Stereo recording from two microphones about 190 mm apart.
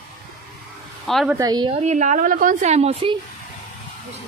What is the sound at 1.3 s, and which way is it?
Speech, 20° right (ahead or behind).